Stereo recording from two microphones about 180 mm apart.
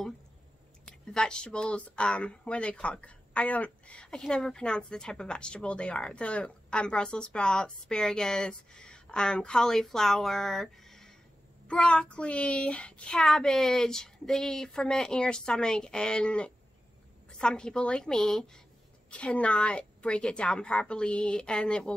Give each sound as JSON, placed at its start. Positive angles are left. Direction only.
{"t": 0.8, "sound": "speech", "side_deg": 5}